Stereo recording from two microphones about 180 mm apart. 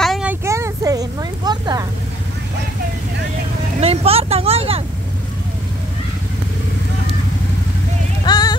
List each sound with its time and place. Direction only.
0.0 s vehicle: centre (ahead or behind)
0.3 s a sound: 15° right (ahead or behind)
3.8 s vehicle: 35° right (ahead or behind)
8.3 s clip-clop: 20° left (ahead or behind)